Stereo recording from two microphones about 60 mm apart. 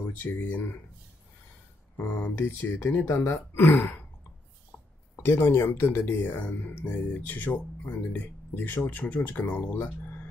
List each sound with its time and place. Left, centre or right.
0.1 s speech: left
2.0 s speech: left
5.2 s speech: left